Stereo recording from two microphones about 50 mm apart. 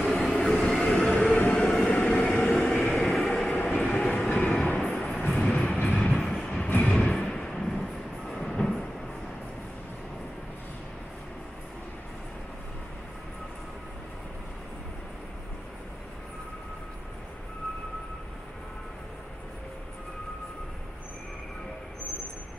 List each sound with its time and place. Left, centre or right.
0.1 s vehicle: centre
0.6 s train: centre
2.3 s vehicle: centre
4.6 s vehicle: centre
5.9 s train: centre
7.0 s a sound: centre
7.8 s train: centre